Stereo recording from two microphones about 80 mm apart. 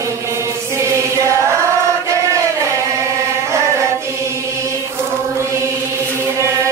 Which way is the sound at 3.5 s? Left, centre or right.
Right.